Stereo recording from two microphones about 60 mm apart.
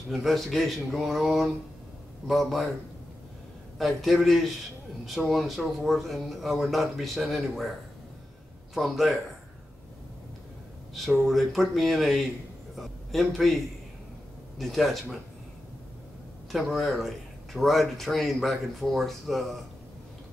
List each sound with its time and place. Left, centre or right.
0.1 s speech: centre
3.7 s speech: centre
8.7 s speech: centre
11.1 s a man's voice: centre
14.6 s speech: centre
16.5 s speech: centre